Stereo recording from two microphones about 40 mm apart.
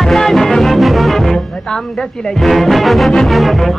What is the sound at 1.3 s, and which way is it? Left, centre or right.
Speech, centre.